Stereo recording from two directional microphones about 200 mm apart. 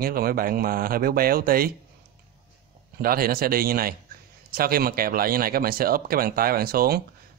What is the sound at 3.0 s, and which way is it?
Speech, 45° right (ahead or behind).